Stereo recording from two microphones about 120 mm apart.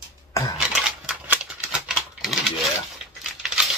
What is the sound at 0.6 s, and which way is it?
Scissors, 5° right (ahead or behind).